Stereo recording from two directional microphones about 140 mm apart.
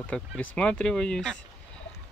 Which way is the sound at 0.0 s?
10° left (ahead or behind).